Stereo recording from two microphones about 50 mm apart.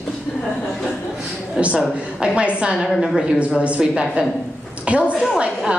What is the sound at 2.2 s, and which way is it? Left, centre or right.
Speech, right.